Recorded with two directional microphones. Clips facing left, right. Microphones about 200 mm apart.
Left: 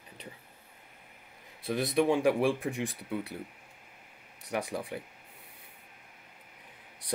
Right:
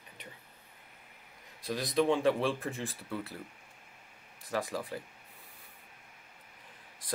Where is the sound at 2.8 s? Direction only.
20° left (ahead or behind).